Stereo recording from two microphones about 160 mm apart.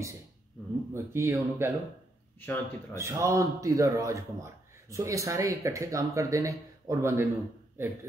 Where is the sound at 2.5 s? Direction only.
10° left (ahead or behind).